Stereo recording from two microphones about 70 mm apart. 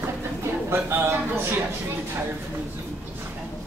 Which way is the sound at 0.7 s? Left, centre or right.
Right.